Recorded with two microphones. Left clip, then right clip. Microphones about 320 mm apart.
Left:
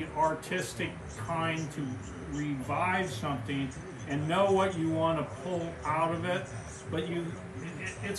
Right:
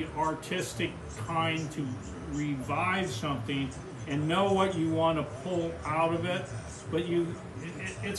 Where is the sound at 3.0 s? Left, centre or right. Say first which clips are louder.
Right 1 dB; centre.